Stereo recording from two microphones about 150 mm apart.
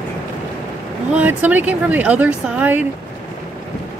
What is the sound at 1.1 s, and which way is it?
Speech, 10° right (ahead or behind).